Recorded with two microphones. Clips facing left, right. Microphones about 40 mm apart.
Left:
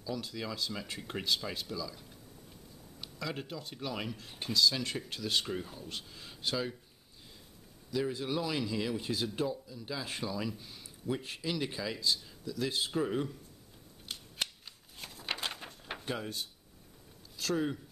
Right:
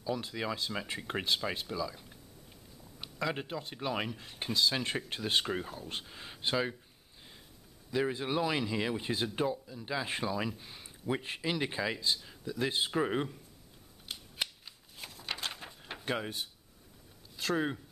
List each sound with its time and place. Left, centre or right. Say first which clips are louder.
0.0 s speech: right 3 dB; right
7.9 s speech: right 2 dB; right
14.0 s scissors: even; centre
15.0 s a sound: left 1 dB; centre
16.1 s speech: right 4 dB; right